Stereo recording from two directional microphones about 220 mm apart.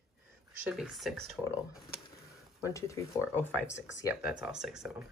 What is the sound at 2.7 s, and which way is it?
Speech, 15° left (ahead or behind).